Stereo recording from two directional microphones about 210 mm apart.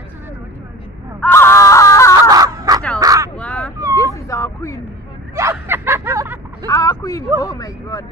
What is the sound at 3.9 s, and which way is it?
Cat, 15° left (ahead or behind).